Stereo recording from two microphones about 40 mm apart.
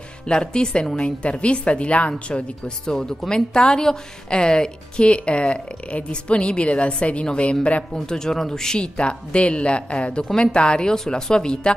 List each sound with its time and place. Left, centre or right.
0.3 s a woman's voice: left
2.9 s a woman's voice: centre
7.9 s speech: centre
8.8 s a woman's voice: left